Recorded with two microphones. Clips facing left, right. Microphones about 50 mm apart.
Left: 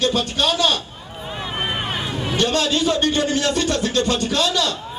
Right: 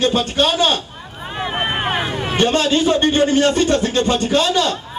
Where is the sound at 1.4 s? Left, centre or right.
Right.